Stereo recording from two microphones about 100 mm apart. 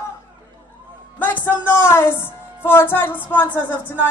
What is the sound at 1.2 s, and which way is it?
A woman's voice, 20° left (ahead or behind).